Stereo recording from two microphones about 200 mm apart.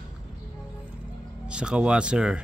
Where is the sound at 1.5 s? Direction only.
5° right (ahead or behind).